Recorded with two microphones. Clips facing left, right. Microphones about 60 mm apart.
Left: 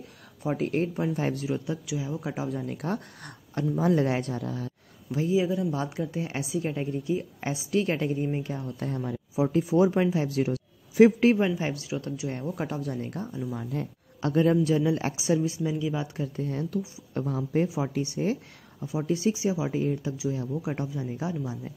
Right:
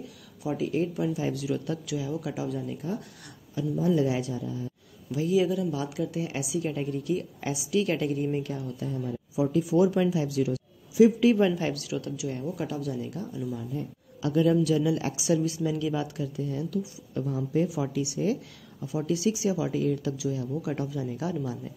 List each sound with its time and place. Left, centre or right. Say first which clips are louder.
0.4 s speech: left 1 dB; left
1.7 s speech: right 1 dB; left
3.5 s a man's voice: left 1 dB; left
5.1 s a woman's voice: right 1 dB; left
8.7 s speech: left 1 dB; left
9.3 s speech: even; left
11.3 s speech: right 2 dB; left
13.6 s speech: left 2 dB; left
14.2 s speech: even; left; by 16.1 s centre
16.2 s a woman's voice: left 1 dB; left